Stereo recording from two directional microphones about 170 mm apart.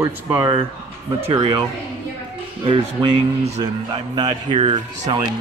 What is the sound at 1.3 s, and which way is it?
Speech, 30° right (ahead or behind).